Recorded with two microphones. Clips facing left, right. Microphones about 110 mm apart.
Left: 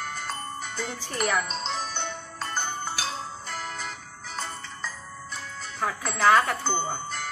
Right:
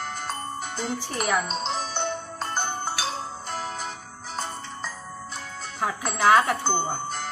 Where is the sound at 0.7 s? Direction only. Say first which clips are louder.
Right 1 dB; 20° right (ahead or behind).